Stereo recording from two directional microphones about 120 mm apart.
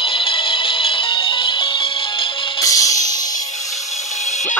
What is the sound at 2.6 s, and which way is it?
Music, 30° left (ahead or behind).